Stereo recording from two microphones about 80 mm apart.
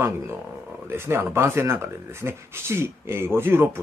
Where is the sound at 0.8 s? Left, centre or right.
Right.